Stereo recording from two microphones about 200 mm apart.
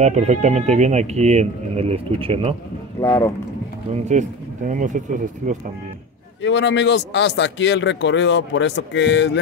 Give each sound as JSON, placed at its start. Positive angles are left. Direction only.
{"t": 0.0, "sound": "speech", "side_deg": -35}
{"t": 3.0, "sound": "speech", "side_deg": 15}
{"t": 3.9, "sound": "speech", "side_deg": -35}
{"t": 6.4, "sound": "speech", "side_deg": 60}